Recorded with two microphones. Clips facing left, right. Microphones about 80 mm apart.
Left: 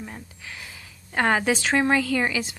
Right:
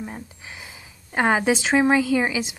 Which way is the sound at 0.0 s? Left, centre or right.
Centre.